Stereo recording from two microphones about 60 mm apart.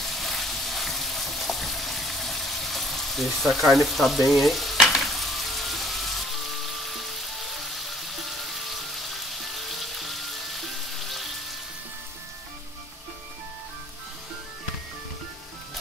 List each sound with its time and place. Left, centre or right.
0.0 s frying: centre